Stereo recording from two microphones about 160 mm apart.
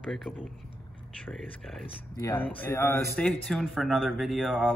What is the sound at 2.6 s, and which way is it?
Speech, 15° left (ahead or behind).